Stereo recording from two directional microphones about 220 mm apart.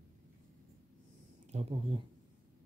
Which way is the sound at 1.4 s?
30° right (ahead or behind).